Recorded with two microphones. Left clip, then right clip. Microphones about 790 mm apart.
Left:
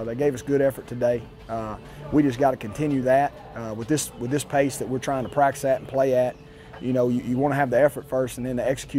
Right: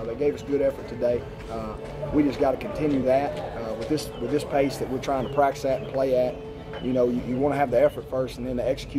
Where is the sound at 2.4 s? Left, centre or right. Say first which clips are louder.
Left 3 dB; left.